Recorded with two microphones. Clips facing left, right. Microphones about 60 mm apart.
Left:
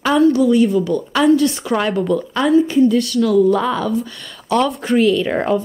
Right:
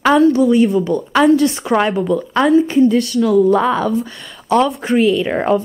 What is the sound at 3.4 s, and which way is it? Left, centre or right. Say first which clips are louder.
Speech: right 3 dB; right.